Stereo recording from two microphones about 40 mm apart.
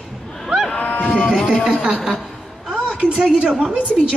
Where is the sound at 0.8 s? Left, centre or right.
Left.